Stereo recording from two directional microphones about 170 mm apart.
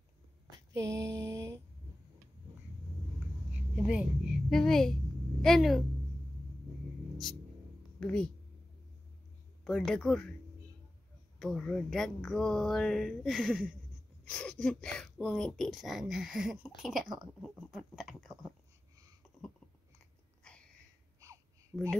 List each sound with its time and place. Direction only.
0.7 s mantra: 20° right (ahead or behind)
3.5 s a sound: 5° right (ahead or behind)
5.4 s speech: centre (ahead or behind)
8.0 s speech: 5° left (ahead or behind)
9.7 s speech: centre (ahead or behind)
11.3 s speech: 5° left (ahead or behind)
21.7 s speech: 5° left (ahead or behind)